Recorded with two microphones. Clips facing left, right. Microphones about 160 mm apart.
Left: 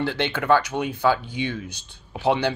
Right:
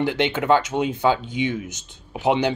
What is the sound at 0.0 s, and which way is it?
Speech, 15° right (ahead or behind).